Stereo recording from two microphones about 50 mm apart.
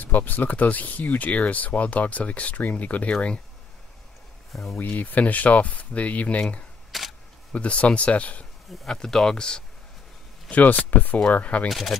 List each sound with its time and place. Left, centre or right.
0.0 s speech: left
4.7 s speech: left
6.9 s single-lens reflex camera: centre
7.5 s speech: left
8.7 s speech: centre
10.5 s speech: left
11.7 s speech: centre